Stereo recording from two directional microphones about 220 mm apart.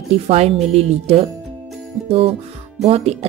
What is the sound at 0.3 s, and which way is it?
Speech, 30° right (ahead or behind).